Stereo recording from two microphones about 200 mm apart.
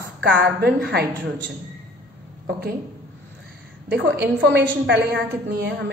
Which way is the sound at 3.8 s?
55° right (ahead or behind).